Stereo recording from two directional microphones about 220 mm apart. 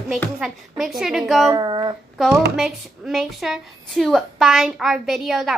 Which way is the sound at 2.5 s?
Centre (ahead or behind).